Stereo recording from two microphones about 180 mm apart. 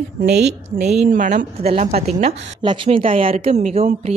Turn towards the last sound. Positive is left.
turn(degrees=-35)  # may be behind; listen again after turning